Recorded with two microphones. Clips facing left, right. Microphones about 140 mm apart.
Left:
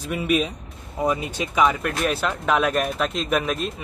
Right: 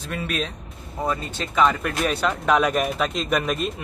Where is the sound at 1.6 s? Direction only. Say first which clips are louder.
Even; 5° left (ahead or behind).